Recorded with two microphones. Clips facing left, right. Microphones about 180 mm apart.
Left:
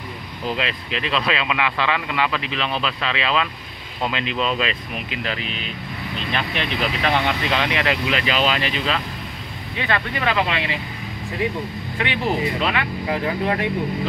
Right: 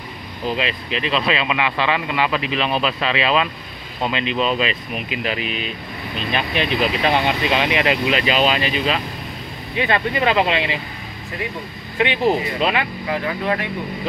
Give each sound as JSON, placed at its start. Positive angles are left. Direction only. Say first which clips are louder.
{"t": 0.6, "sound": "speech", "louder": "right 2 dB", "side_deg": -5}
{"t": 4.0, "sound": "speech", "louder": "right 3 dB", "side_deg": 0}
{"t": 12.0, "sound": "speech", "louder": "right 4 dB", "side_deg": -20}